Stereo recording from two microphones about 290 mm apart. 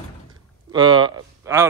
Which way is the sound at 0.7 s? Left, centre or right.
Centre.